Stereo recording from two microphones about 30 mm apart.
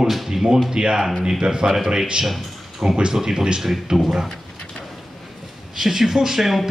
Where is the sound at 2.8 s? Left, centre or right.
Right.